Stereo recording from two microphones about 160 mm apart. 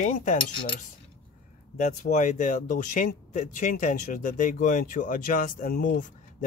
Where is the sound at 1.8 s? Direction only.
50° left (ahead or behind).